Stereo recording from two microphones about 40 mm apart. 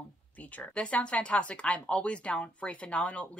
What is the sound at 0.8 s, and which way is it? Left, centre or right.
Speech, left.